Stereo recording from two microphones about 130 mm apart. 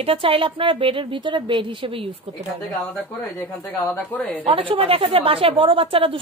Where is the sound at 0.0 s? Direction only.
45° right (ahead or behind).